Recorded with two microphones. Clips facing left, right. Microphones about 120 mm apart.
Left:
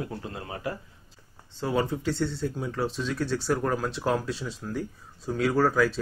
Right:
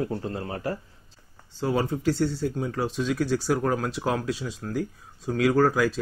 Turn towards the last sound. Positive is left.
turn(degrees=0)  # may be behind; listen again after turning